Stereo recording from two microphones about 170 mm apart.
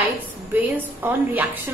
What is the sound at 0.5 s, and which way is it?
A woman's voice, 10° right (ahead or behind).